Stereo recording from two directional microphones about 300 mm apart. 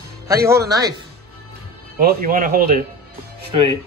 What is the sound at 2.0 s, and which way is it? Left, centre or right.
Speech, right.